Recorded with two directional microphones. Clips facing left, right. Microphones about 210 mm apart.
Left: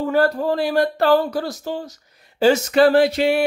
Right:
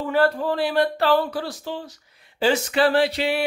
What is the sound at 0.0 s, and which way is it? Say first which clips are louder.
Speech: left 2 dB; 40° left (ahead or behind).